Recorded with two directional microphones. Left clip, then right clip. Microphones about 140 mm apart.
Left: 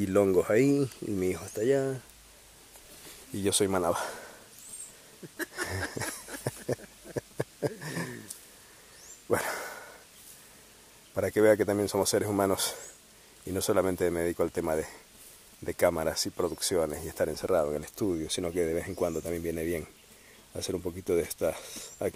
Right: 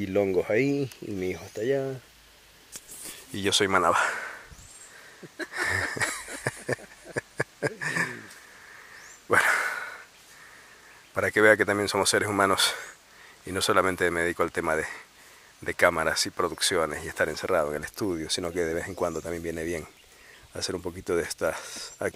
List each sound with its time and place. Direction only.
0.0 s speech: 10° left (ahead or behind)
3.3 s speech: 10° left (ahead or behind)
5.5 s a sound: 10° left (ahead or behind)
9.3 s dog: 15° left (ahead or behind)
11.1 s speech: 10° left (ahead or behind)